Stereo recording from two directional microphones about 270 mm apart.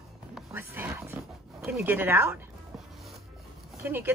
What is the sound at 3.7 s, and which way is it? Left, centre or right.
Speech, centre.